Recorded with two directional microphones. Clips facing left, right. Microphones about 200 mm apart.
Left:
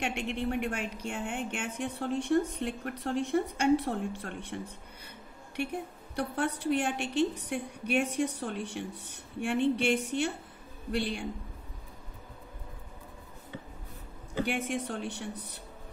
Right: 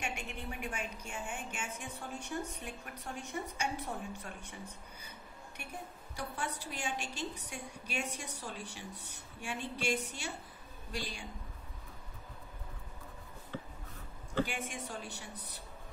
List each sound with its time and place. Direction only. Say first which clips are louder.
0.0 s a woman's voice: left 9 dB; 65° left (ahead or behind)
6.1 s a woman's voice: left 9 dB; 65° left (ahead or behind)
14.4 s a woman's voice: left 6 dB; 65° left (ahead or behind)